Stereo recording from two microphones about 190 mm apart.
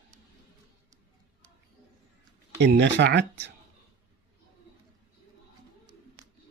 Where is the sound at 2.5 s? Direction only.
65° right (ahead or behind).